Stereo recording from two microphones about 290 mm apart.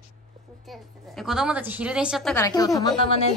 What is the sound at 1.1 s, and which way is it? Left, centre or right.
A woman's voice, centre.